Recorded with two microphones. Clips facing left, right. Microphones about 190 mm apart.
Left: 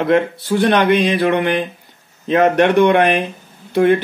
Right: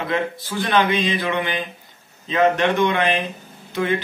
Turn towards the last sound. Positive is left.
turn(degrees=60)  # may be behind; listen again after turning